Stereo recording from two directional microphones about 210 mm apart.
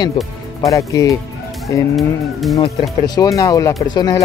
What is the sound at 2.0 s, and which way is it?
Speech, centre (ahead or behind).